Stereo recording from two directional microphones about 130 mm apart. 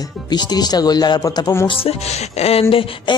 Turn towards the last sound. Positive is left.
turn(degrees=45)  # may be behind; listen again after turning